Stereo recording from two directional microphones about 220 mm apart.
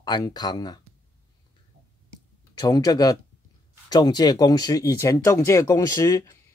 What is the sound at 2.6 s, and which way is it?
Speech, 15° left (ahead or behind).